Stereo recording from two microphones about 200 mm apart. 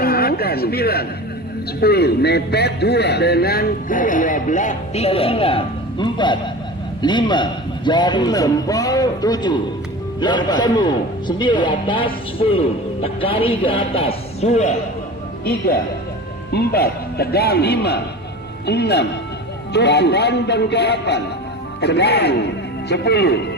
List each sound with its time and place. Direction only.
0.0 s a sound: 50° left (ahead or behind)
1.8 s a man's voice: 55° left (ahead or behind); by 14.8 s 35° left (ahead or behind)
15.4 s speech: 50° left (ahead or behind)